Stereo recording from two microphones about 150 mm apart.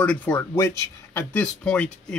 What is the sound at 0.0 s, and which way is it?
Speech, 10° left (ahead or behind).